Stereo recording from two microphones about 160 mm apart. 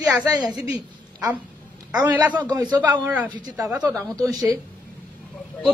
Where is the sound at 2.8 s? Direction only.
10° right (ahead or behind).